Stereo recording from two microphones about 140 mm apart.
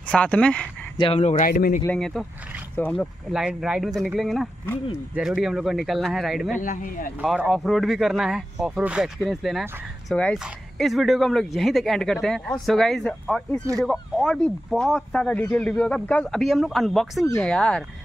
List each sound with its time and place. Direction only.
0.1 s speech: 10° left (ahead or behind)
0.9 s speech: 35° left (ahead or behind)
1.2 s speech: 65° left (ahead or behind)
1.9 s speech: 5° left (ahead or behind)
6.5 s speech: 75° left (ahead or behind)
7.2 s speech: 10° right (ahead or behind)
7.4 s speech: centre (ahead or behind)